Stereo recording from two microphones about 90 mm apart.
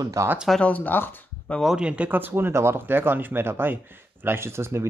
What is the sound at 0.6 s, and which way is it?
Speech, 20° left (ahead or behind).